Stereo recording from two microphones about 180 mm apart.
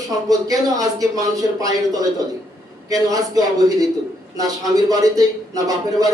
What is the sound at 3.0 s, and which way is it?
A man's voice, 20° right (ahead or behind).